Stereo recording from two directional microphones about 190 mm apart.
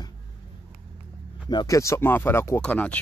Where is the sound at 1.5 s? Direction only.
20° left (ahead or behind).